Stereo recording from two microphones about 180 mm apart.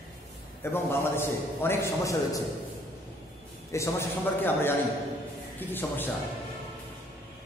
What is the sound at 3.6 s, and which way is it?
A man's voice, 15° left (ahead or behind).